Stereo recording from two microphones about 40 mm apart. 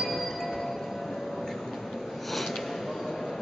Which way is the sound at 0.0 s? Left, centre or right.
Centre.